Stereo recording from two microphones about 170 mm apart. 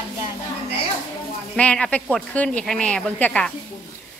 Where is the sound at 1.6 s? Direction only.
10° left (ahead or behind).